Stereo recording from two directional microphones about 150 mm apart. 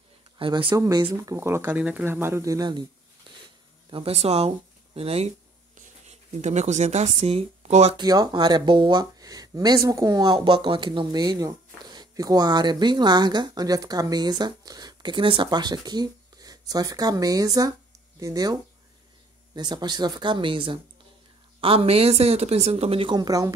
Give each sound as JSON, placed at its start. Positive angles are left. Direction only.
{"t": 0.4, "sound": "speech", "side_deg": -35}
{"t": 0.7, "sound": "speech", "side_deg": -20}
{"t": 3.3, "sound": "a sound", "side_deg": -35}
{"t": 3.9, "sound": "speech", "side_deg": -40}
{"t": 7.9, "sound": "speech", "side_deg": -25}